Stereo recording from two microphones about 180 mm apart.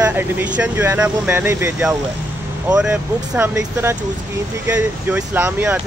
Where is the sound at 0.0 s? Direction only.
10° right (ahead or behind).